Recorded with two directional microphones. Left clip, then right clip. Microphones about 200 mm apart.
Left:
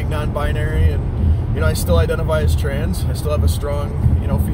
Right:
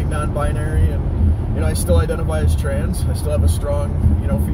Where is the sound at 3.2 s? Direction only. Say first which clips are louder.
Even; 15° left (ahead or behind).